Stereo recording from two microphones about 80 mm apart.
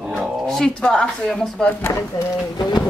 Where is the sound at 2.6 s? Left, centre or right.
Left.